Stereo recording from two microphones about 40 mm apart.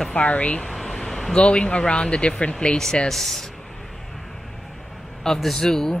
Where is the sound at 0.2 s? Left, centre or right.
Left.